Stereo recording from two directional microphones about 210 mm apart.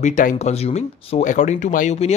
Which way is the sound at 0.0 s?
35° left (ahead or behind).